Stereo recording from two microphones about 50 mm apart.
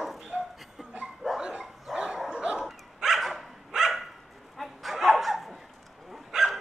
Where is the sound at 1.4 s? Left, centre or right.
Centre.